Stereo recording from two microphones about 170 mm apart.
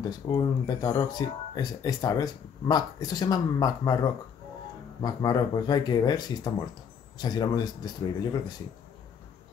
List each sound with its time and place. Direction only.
0.3 s speech: 25° left (ahead or behind)
5.0 s speech: 25° left (ahead or behind)